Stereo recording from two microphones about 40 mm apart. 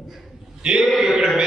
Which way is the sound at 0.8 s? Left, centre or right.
Centre.